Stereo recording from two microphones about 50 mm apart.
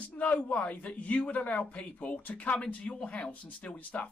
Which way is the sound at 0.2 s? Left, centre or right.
Left.